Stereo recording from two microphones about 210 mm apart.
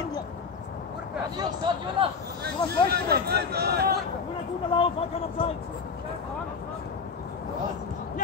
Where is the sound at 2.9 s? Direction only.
50° right (ahead or behind).